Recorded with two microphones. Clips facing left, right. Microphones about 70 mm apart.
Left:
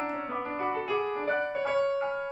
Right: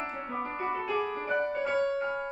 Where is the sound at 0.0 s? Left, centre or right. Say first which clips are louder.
Left 3 dB; centre.